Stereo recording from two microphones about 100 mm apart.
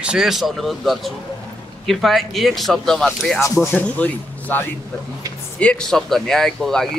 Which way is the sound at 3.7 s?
15° left (ahead or behind).